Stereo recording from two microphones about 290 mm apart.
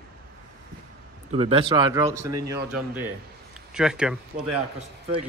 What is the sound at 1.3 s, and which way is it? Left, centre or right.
Speech, centre.